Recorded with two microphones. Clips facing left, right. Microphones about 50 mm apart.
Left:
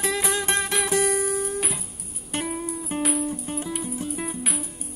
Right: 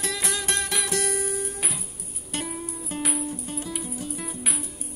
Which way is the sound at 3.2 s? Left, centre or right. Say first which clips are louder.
Left 3 dB; left.